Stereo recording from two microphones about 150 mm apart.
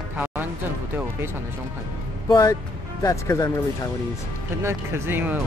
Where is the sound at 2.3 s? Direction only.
20° left (ahead or behind).